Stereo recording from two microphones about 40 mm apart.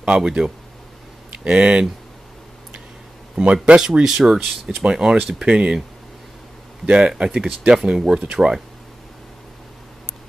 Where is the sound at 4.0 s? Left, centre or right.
Centre.